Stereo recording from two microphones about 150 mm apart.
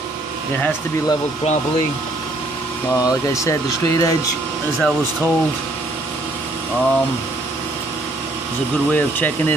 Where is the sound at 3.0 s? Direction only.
20° left (ahead or behind).